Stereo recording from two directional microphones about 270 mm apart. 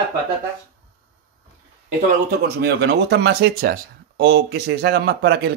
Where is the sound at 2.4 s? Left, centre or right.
Right.